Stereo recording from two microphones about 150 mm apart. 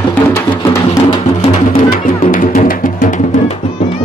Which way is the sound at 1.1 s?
45° left (ahead or behind).